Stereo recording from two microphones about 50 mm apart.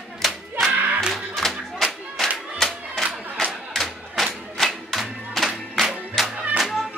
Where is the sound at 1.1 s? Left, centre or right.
Centre.